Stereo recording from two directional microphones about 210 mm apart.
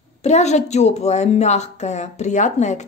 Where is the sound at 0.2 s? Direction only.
30° left (ahead or behind).